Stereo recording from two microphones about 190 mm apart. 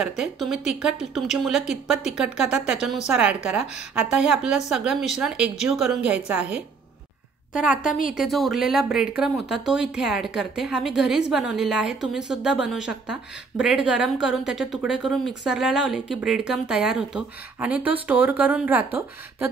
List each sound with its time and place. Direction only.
0.0 s speech: 5° right (ahead or behind)